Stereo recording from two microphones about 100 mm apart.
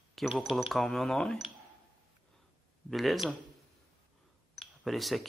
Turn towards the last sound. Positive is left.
turn(degrees=0)  # may be behind; listen again after turning